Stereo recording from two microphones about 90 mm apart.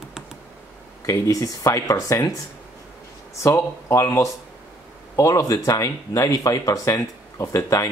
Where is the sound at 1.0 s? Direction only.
35° left (ahead or behind).